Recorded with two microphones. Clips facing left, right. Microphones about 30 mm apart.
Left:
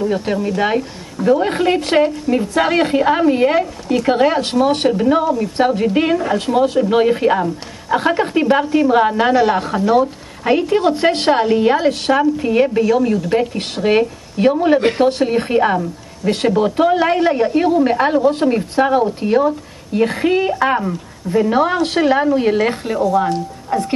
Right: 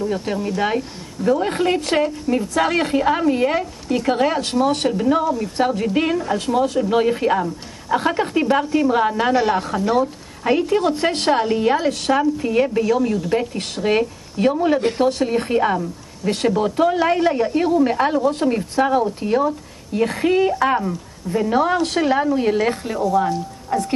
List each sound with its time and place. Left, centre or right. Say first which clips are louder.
0.0 s a woman's voice: left 4 dB; centre